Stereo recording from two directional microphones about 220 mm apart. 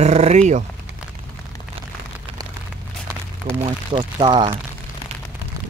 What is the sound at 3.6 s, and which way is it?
Speech, 25° right (ahead or behind).